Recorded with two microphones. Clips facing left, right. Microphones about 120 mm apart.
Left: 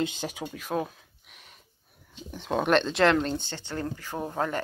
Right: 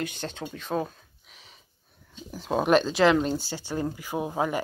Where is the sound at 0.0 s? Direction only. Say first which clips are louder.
Left 2 dB; 15° left (ahead or behind).